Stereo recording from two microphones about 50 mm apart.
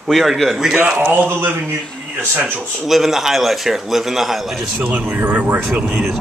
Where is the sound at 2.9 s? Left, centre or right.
Centre.